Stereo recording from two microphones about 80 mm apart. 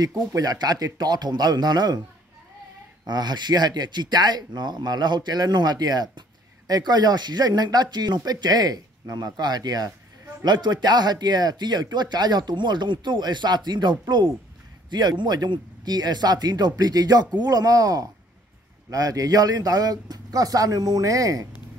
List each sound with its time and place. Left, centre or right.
0.0 s speech: right
3.1 s speech: right